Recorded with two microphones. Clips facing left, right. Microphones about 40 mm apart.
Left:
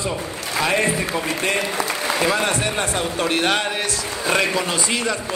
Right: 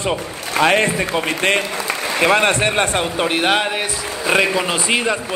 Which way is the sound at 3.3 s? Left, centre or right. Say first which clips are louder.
Right 2 dB; centre.